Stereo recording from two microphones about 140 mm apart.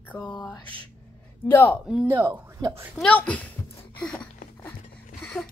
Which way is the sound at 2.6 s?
25° right (ahead or behind).